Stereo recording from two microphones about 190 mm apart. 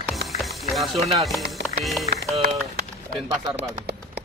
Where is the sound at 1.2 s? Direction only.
Centre (ahead or behind).